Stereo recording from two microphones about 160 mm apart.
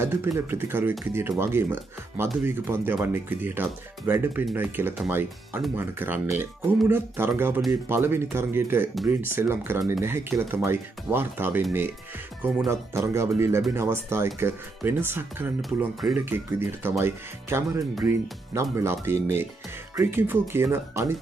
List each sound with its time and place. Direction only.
0.0 s speech: 15° right (ahead or behind)